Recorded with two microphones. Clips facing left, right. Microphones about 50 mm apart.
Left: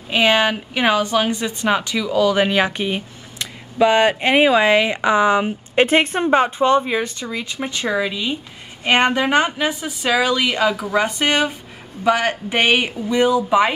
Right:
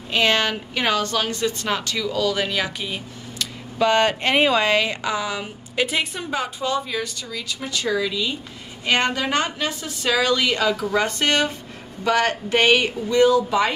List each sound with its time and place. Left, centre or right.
0.1 s a woman's voice: centre
2.3 s a woman's voice: left